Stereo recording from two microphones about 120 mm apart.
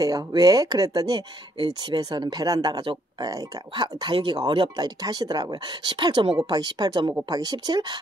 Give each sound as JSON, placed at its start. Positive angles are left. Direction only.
{"t": 0.0, "sound": "speech", "side_deg": -30}